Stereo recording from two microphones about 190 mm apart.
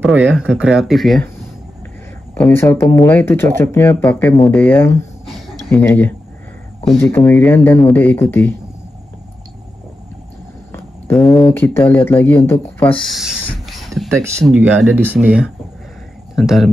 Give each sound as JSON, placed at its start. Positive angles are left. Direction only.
{"t": 0.0, "sound": "speech", "side_deg": -5}
{"t": 2.3, "sound": "speech", "side_deg": 10}
{"t": 10.7, "sound": "a sound", "side_deg": 10}
{"t": 11.1, "sound": "speech", "side_deg": 0}
{"t": 11.5, "sound": "speech", "side_deg": 10}
{"t": 13.0, "sound": "speech", "side_deg": 0}
{"t": 13.7, "sound": "a sound", "side_deg": 0}
{"t": 14.4, "sound": "speech", "side_deg": -10}